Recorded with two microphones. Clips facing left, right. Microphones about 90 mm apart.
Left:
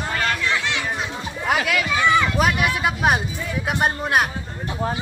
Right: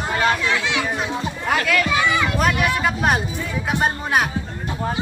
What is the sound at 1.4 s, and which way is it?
Speech, 5° left (ahead or behind).